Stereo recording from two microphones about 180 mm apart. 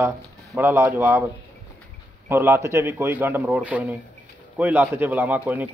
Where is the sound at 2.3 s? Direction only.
15° right (ahead or behind).